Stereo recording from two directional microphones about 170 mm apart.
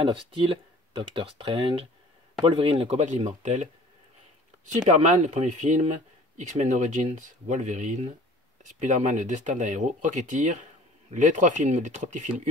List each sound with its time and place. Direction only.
0.0 s speech: 30° right (ahead or behind); by 3.6 s 45° right (ahead or behind)
5.0 s speech: 45° right (ahead or behind)